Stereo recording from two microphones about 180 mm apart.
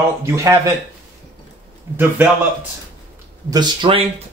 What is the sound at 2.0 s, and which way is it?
Speech, 10° right (ahead or behind).